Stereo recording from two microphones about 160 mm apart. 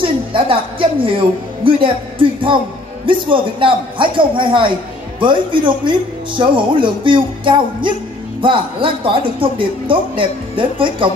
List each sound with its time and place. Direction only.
0.0 s a woman's voice: 35° right (ahead or behind)